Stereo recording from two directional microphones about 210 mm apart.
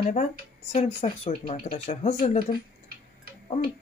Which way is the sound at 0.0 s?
35° left (ahead or behind).